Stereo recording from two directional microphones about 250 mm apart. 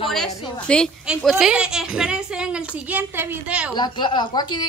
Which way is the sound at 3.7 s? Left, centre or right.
Centre.